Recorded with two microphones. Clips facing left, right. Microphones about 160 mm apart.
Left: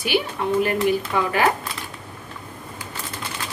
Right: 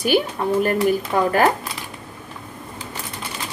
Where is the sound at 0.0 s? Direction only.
45° right (ahead or behind).